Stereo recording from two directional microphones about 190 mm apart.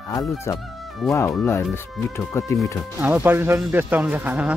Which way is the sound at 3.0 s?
10° right (ahead or behind).